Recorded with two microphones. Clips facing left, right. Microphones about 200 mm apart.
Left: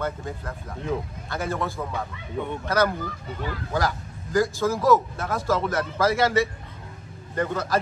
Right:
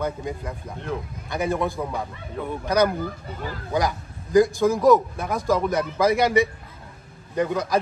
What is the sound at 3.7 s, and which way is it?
A man's voice, 15° right (ahead or behind).